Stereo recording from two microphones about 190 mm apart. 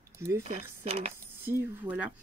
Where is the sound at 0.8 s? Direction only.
30° right (ahead or behind).